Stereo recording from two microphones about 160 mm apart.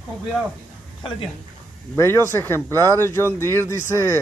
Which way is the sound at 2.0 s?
15° left (ahead or behind).